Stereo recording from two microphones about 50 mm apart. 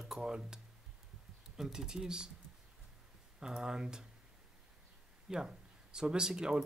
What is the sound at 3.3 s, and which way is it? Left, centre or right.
Speech, centre.